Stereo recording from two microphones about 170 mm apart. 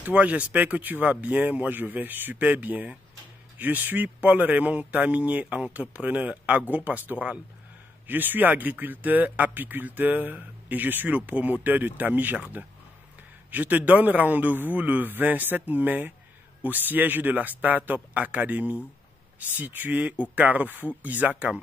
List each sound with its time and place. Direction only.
0.0 s speech: 10° right (ahead or behind)